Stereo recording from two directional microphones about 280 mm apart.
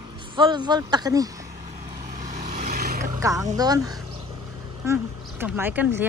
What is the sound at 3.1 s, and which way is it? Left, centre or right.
A woman's voice, centre.